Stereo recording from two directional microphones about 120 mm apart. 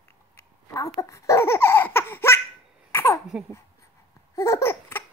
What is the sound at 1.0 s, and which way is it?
Laughter, 25° left (ahead or behind).